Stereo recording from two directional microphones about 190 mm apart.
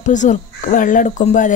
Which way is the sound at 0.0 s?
40° left (ahead or behind).